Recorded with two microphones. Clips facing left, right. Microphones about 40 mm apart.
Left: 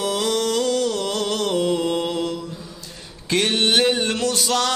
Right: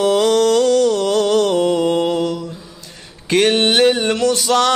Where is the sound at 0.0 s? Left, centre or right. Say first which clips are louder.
Right 8 dB; right.